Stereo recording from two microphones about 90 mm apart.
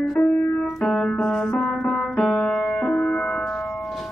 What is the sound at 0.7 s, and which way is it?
Music, centre (ahead or behind).